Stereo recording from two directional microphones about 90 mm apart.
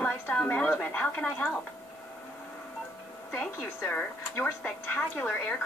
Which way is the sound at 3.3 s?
15° left (ahead or behind).